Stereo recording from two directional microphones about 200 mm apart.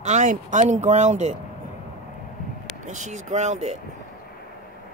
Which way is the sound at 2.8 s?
35° right (ahead or behind).